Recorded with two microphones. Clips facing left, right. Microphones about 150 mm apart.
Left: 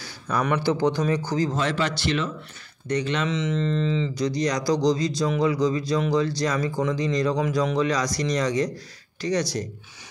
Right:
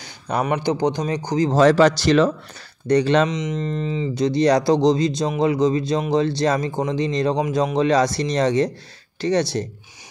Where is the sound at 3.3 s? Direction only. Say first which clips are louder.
Even; 15° right (ahead or behind).